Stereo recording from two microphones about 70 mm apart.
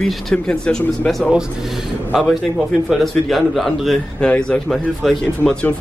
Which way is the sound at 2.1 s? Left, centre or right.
Centre.